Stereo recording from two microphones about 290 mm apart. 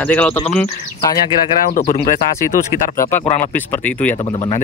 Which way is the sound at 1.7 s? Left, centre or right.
Left.